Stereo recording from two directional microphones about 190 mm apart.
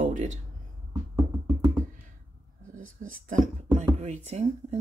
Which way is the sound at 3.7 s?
35° right (ahead or behind).